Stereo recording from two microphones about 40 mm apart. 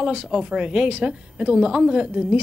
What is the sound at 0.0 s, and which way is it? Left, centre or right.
A woman's voice, right.